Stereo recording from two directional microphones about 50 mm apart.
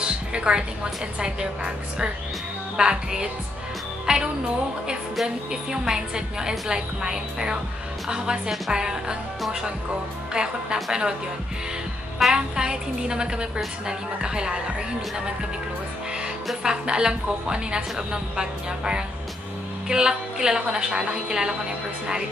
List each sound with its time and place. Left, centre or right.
0.0 s music: centre
1.2 s a woman's voice: centre
4.0 s music: centre
5.7 s a woman's voice: centre
10.3 s a woman's voice: centre
12.4 s a woman's voice: centre
16.6 s a woman's voice: centre